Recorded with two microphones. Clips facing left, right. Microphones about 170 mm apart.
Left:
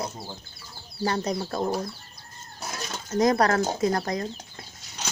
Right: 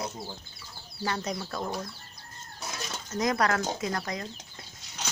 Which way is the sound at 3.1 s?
35° left (ahead or behind).